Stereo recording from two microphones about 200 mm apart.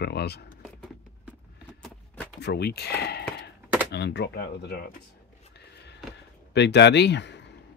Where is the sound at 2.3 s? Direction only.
55° left (ahead or behind).